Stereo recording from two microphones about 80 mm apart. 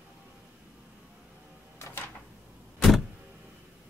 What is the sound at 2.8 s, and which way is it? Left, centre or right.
Power windows, centre.